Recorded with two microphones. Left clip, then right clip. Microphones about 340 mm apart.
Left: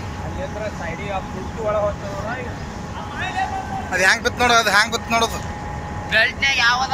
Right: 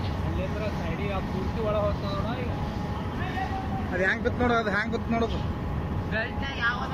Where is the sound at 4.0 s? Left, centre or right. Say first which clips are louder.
Left 9 dB; left.